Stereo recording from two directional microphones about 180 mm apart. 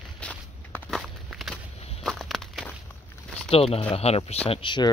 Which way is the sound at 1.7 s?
35° left (ahead or behind).